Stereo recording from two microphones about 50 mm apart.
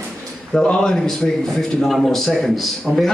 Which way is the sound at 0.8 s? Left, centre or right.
Centre.